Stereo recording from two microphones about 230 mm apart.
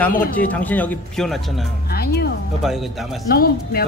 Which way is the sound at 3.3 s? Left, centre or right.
Left.